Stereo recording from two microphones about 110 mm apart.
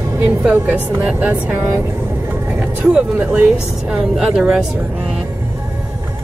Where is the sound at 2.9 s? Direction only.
10° right (ahead or behind).